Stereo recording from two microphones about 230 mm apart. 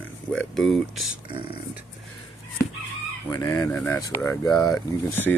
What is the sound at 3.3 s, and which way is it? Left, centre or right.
Speech, centre.